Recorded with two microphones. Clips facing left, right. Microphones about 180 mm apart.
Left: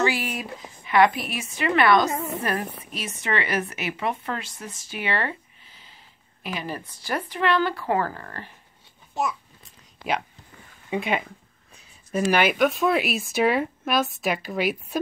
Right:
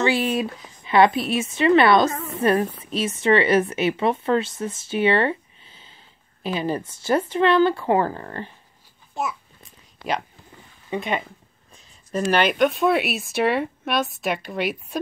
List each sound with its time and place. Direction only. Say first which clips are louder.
0.0 s a sound: right 4 dB; 30° right (ahead or behind)
0.8 s a woman's voice: right 3 dB; 25° right (ahead or behind)
2.0 s a woman's voice: right 1 dB; 25° left (ahead or behind)
2.8 s a woman's voice: right 10 dB; 25° right (ahead or behind)
10.9 s speech: even; 10° left (ahead or behind)